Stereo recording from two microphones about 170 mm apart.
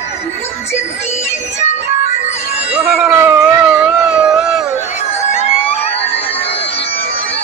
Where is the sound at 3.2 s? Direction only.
10° right (ahead or behind).